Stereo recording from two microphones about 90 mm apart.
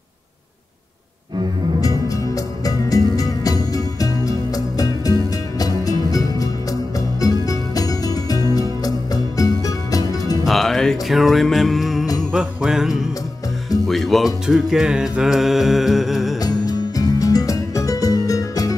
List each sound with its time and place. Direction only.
1.8 s music: 40° left (ahead or behind)
10.4 s music: centre (ahead or behind)
16.3 s music: 45° left (ahead or behind)